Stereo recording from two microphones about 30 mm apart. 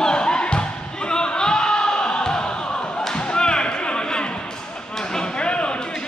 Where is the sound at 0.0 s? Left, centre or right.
Left.